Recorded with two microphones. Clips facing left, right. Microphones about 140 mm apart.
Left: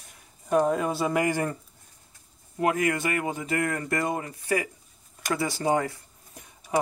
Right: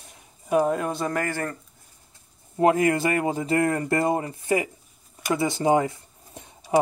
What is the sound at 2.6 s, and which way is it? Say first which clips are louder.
Speech: right 5 dB; 30° right (ahead or behind).